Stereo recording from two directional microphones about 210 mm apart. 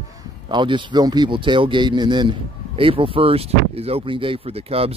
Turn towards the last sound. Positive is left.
turn(degrees=-25)  # may be behind; listen again after turning